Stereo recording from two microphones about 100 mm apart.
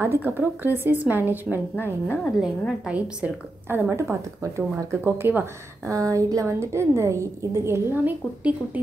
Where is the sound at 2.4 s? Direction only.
5° right (ahead or behind).